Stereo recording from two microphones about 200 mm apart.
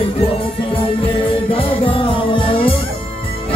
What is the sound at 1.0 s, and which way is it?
Music, 25° left (ahead or behind).